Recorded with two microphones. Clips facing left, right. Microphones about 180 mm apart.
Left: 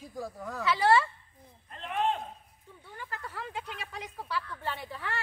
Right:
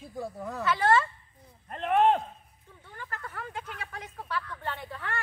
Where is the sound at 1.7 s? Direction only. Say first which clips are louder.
Right 7 dB; 55° right (ahead or behind).